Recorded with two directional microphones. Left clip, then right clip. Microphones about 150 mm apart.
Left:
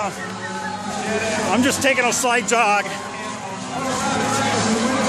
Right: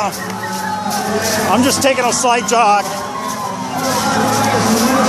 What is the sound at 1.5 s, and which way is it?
Speech, 30° left (ahead or behind).